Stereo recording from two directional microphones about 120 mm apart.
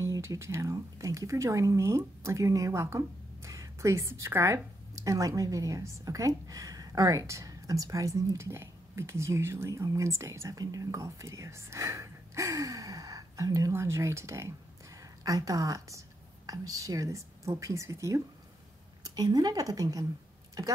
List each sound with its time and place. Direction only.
0.0 s a woman's voice: 25° right (ahead or behind)